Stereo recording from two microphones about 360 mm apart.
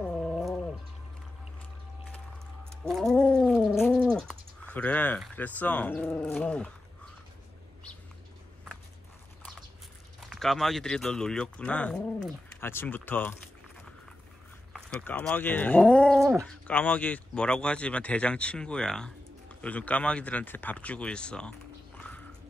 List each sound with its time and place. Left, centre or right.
0.2 s a sound: centre
2.8 s cat: centre
10.2 s speech: centre
14.7 s speech: centre